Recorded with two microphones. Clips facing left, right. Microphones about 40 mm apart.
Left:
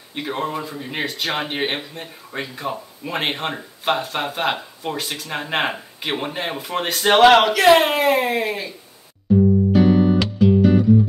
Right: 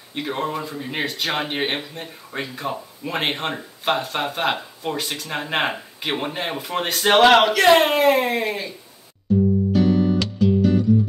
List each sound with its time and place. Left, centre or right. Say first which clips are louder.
0.1 s speech: even; centre
9.3 s music: left 3 dB; centre